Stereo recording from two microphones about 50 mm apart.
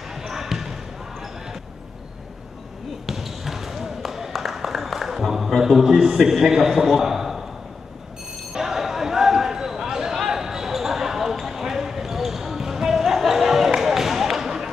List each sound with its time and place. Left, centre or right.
0.3 s basketball bounce: centre
3.1 s basketball bounce: centre
8.5 s a sound: centre